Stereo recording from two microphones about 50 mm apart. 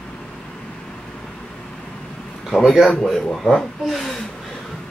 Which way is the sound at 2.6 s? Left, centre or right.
Centre.